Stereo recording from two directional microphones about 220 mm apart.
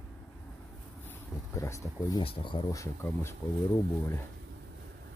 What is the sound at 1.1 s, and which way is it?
Speech, 10° left (ahead or behind).